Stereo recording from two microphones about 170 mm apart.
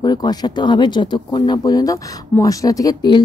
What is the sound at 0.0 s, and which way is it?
Speech, 25° left (ahead or behind).